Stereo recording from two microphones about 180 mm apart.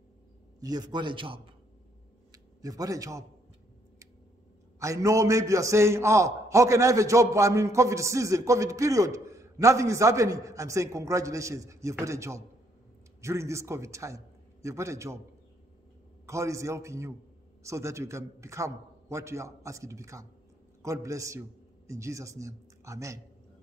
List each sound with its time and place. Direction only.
0.6 s a man's voice: 20° right (ahead or behind)
4.7 s a man's voice: 15° right (ahead or behind)
16.3 s a man's voice: 15° right (ahead or behind)